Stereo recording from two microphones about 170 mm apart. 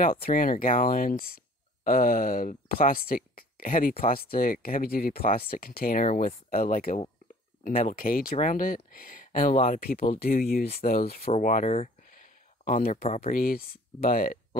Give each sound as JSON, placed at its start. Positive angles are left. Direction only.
{"t": 0.0, "sound": "speech", "side_deg": 55}